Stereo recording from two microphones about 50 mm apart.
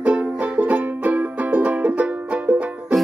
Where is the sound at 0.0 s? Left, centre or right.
Right.